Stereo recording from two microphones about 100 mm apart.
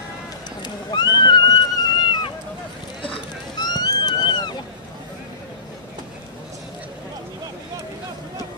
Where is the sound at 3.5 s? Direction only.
40° left (ahead or behind).